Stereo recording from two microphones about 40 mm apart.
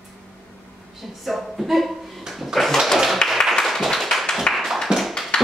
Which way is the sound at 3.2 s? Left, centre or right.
Left.